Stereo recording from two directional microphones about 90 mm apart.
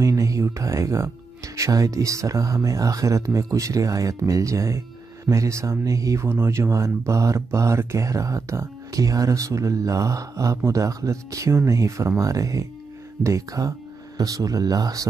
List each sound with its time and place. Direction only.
0.0 s speech: 35° right (ahead or behind)